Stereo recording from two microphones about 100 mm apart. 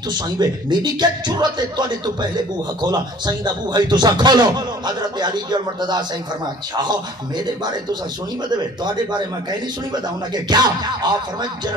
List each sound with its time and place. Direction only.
0.1 s speech: 50° right (ahead or behind)